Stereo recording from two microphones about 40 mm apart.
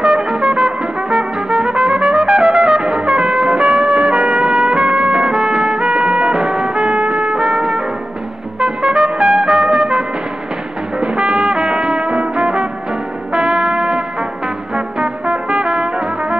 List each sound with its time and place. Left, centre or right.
0.0 s music: right
3.1 s trumpet: right
11.0 s music: right
15.0 s brass instrument: right